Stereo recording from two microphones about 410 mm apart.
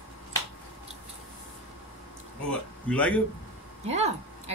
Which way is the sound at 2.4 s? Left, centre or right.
Centre.